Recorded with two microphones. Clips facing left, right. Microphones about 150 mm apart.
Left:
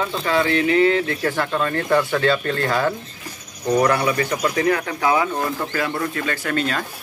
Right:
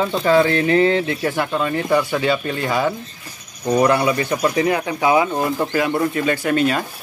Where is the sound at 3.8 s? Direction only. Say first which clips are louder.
Right 3 dB; 20° right (ahead or behind).